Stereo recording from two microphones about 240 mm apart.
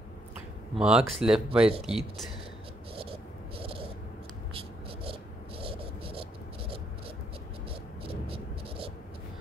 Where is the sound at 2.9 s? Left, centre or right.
Right.